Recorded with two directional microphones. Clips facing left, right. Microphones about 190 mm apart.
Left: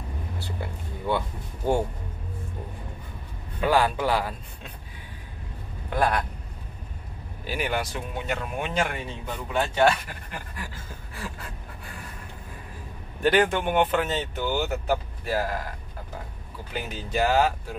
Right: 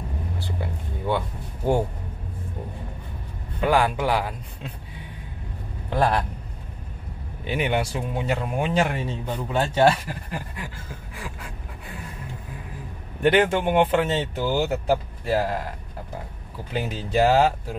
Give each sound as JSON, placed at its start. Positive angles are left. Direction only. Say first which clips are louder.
{"t": 3.6, "sound": "speech", "louder": "right 1 dB", "side_deg": -15}
{"t": 5.9, "sound": "speech", "louder": "right 2 dB", "side_deg": -25}
{"t": 7.4, "sound": "speech", "louder": "right 4 dB", "side_deg": -20}
{"t": 11.1, "sound": "speech", "louder": "left 1 dB", "side_deg": -10}
{"t": 13.2, "sound": "speech", "louder": "right 2 dB", "side_deg": -25}
{"t": 16.7, "sound": "speech", "louder": "right 5 dB", "side_deg": -30}